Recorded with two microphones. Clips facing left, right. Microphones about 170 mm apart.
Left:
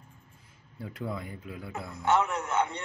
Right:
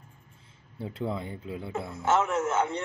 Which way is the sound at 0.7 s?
25° right (ahead or behind).